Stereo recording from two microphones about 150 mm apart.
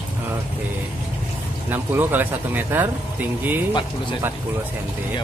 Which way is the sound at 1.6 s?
15° right (ahead or behind).